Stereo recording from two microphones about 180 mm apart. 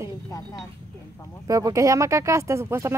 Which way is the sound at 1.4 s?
20° right (ahead or behind).